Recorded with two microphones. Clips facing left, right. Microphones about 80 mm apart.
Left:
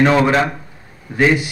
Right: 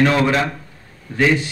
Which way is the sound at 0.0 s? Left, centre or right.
Left.